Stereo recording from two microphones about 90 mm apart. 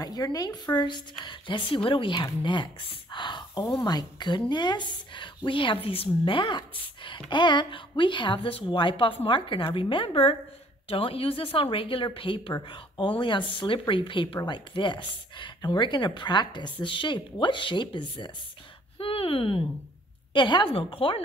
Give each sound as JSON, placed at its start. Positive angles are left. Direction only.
{"t": 0.0, "sound": "a woman's voice", "side_deg": 45}
{"t": 16.8, "sound": "a woman's voice", "side_deg": 65}
{"t": 18.9, "sound": "speech", "side_deg": 90}
{"t": 20.3, "sound": "a woman's voice", "side_deg": 65}